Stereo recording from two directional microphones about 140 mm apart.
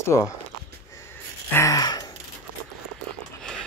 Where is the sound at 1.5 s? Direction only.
25° left (ahead or behind).